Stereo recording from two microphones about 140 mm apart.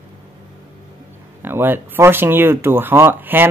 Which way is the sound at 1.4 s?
15° right (ahead or behind).